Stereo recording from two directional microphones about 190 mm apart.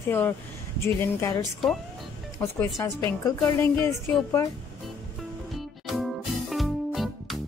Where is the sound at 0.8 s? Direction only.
15° left (ahead or behind).